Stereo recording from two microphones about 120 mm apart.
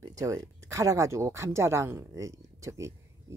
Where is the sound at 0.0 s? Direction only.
30° right (ahead or behind).